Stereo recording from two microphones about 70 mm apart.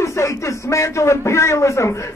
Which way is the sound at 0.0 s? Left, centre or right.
Left.